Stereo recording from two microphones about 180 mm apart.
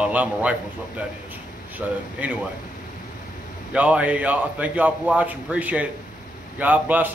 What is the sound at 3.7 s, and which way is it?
A man's voice, 5° right (ahead or behind).